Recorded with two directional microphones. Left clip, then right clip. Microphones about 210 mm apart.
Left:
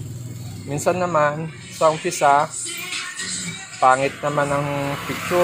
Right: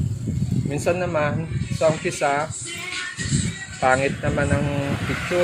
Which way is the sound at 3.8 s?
15° left (ahead or behind).